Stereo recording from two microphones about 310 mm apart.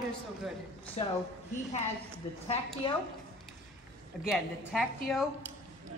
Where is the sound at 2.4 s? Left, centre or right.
Centre.